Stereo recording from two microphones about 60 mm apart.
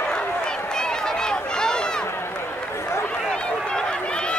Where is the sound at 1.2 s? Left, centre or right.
Centre.